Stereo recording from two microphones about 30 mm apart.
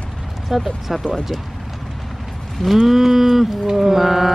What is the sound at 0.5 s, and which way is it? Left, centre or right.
Mantra, centre.